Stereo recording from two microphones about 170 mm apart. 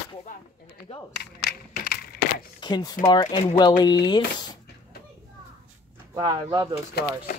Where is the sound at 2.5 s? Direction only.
25° left (ahead or behind).